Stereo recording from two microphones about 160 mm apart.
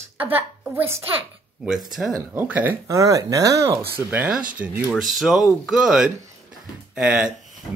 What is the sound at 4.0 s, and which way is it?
Speech, 10° right (ahead or behind).